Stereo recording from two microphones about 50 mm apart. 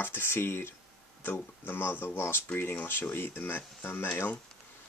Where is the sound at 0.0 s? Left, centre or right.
Left.